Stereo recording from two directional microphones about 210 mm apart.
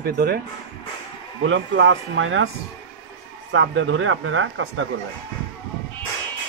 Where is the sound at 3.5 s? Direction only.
60° right (ahead or behind).